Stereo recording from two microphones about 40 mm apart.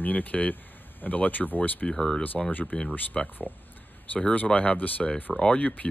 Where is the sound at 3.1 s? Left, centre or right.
Centre.